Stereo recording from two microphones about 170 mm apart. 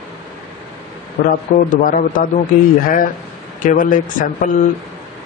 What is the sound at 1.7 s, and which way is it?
A man's voice, 50° left (ahead or behind).